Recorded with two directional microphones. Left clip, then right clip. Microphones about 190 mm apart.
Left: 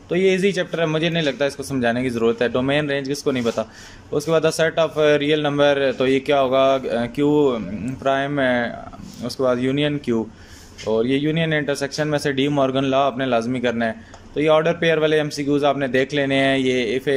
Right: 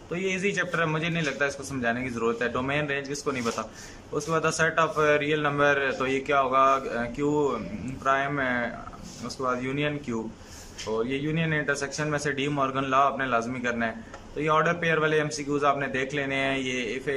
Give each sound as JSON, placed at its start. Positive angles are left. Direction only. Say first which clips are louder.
{"t": 0.1, "sound": "speech", "louder": "left 10 dB", "side_deg": 25}